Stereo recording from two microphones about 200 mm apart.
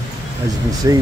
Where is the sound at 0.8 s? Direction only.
15° right (ahead or behind).